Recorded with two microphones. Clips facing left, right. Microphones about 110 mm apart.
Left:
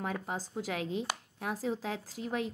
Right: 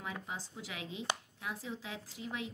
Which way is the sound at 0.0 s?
50° left (ahead or behind).